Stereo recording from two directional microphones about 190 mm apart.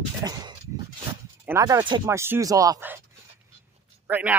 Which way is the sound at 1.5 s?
15° right (ahead or behind).